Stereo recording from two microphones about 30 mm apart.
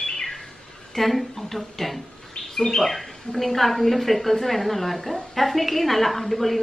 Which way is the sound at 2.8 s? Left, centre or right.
Centre.